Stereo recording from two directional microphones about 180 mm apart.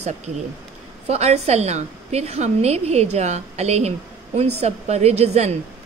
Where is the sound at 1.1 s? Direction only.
35° right (ahead or behind).